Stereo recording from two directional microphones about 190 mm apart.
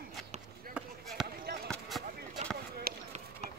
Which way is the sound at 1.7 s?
Centre (ahead or behind).